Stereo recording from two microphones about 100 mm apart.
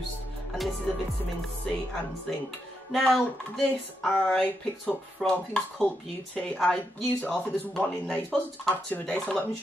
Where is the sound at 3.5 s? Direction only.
10° left (ahead or behind).